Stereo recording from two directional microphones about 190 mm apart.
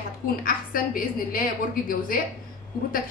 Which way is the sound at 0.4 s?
50° left (ahead or behind).